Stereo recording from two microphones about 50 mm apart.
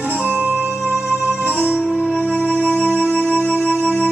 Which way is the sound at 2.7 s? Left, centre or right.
Left.